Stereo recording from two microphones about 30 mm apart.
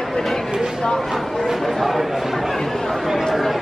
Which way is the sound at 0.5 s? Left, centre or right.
Centre.